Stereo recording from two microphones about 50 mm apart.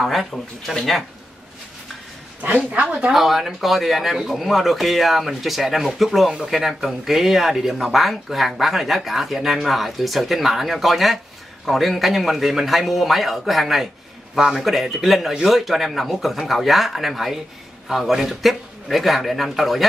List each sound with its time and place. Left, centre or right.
0.0 s speech: centre
2.4 s a woman's voice: right
3.1 s speech: centre